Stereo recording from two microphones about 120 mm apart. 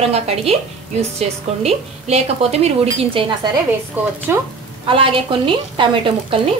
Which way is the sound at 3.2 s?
45° right (ahead or behind).